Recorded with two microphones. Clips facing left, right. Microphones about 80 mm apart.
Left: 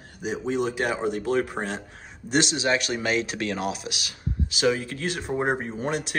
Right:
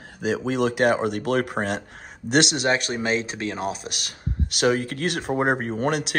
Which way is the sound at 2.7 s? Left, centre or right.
Right.